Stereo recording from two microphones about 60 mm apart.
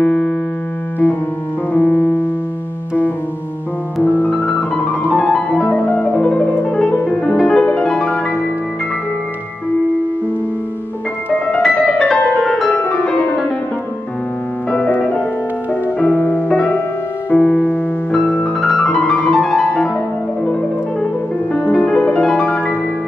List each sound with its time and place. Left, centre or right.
0.0 s music: centre
1.7 s music: left
4.0 s piano: left
8.0 s music: centre
11.2 s music: left
11.8 s piano: centre
12.4 s music: centre
12.6 s music: left
14.7 s music: left
17.3 s piano: left
19.6 s music: centre
21.0 s music: left